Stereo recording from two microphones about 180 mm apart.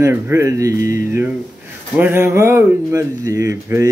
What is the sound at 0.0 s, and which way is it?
Speech, 15° right (ahead or behind).